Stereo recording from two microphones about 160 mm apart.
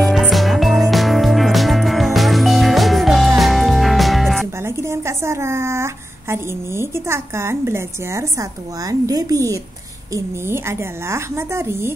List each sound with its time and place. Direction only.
0.0 s music: centre (ahead or behind)
4.6 s a woman's voice: 15° right (ahead or behind)